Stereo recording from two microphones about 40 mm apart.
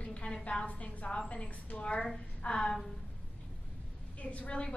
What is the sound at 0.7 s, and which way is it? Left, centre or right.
A woman's voice, left.